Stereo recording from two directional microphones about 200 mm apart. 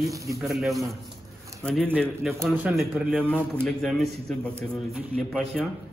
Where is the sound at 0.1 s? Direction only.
15° right (ahead or behind).